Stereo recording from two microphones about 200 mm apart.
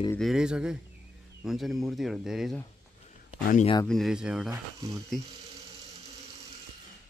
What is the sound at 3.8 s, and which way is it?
Speech, centre (ahead or behind).